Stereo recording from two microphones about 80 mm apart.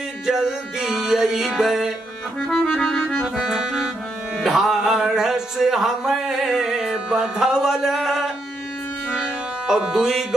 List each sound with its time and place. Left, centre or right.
0.3 s music: centre
2.6 s accordion: centre
3.1 s accordion: centre
4.4 s a sound: centre
9.1 s music: centre